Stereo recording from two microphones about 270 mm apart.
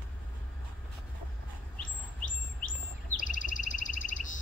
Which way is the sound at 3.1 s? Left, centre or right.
Left.